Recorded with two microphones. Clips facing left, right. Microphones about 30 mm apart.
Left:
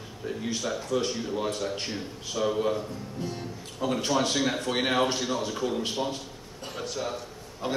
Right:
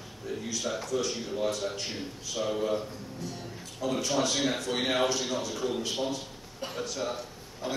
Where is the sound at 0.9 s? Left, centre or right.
Left.